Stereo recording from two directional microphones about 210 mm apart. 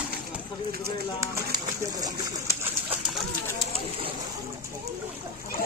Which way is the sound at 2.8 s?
Centre (ahead or behind).